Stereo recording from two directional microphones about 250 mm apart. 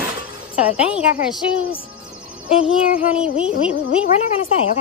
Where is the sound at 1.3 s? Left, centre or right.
Left.